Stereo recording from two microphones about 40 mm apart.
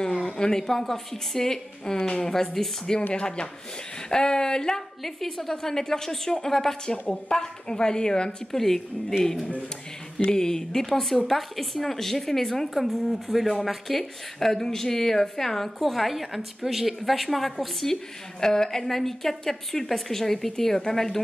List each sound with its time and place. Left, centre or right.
0.0 s a woman's voice: centre
3.2 s speech: left
5.0 s a woman's voice: centre; by 8.4 s left
8.5 s a woman's voice: centre
10.3 s a woman's voice: centre
12.7 s a woman's voice: centre